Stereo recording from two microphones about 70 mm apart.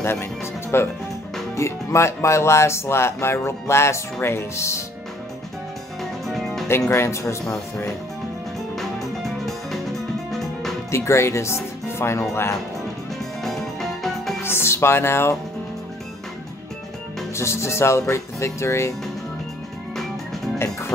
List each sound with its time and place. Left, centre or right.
0.0 s speech: left
6.2 s music: centre
6.7 s speech: left
8.7 s music: centre
10.9 s speech: left
13.4 s music: centre
14.4 s speech: left
17.4 s speech: left
20.5 s music: left